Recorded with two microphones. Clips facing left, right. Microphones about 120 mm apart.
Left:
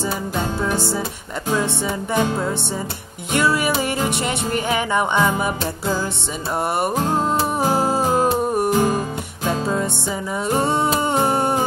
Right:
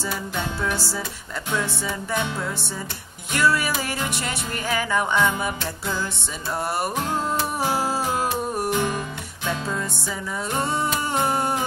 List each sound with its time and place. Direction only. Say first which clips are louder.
2.1 s music: left 8 dB; 30° left (ahead or behind)
7.0 s music: left 5 dB; 35° left (ahead or behind)
10.5 s a sound: left 6 dB; 25° left (ahead or behind)